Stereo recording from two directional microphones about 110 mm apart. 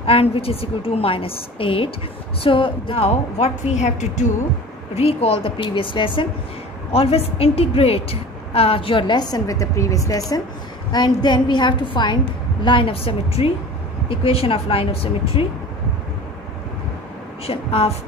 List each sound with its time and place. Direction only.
0.0 s a woman's voice: 60° left (ahead or behind); by 4.3 s 90° left
4.9 s speech: 60° left (ahead or behind)
6.9 s a woman's voice: 65° left (ahead or behind)
17.5 s a woman's voice: 60° left (ahead or behind)